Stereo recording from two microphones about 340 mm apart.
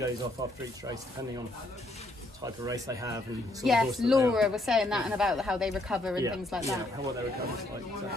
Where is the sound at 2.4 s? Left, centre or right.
Centre.